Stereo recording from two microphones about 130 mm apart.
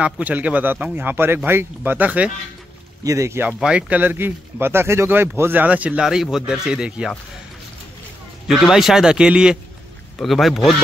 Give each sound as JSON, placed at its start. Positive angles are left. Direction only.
{"t": 0.0, "sound": "speech", "side_deg": -10}
{"t": 3.0, "sound": "speech", "side_deg": -25}
{"t": 3.4, "sound": "speech", "side_deg": -5}
{"t": 8.5, "sound": "speech", "side_deg": -5}